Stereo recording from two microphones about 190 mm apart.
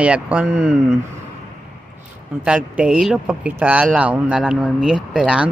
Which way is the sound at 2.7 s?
5° right (ahead or behind).